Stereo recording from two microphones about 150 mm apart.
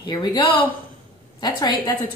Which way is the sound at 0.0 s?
30° left (ahead or behind).